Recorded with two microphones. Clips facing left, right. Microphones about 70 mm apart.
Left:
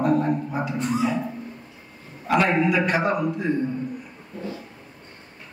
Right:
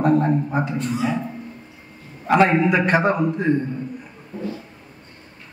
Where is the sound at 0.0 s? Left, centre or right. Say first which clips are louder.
Right 3 dB; right.